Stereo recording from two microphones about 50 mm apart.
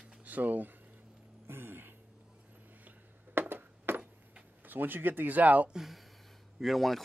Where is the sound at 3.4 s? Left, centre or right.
Right.